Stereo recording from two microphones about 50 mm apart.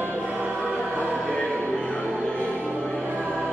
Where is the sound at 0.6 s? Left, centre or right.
Left.